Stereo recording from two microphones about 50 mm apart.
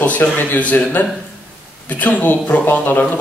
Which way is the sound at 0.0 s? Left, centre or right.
Left.